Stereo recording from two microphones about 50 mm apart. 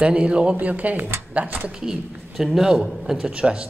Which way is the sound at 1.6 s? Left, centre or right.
Centre.